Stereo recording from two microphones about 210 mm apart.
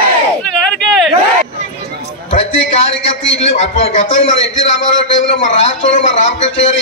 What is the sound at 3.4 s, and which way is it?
A man's voice, 30° left (ahead or behind).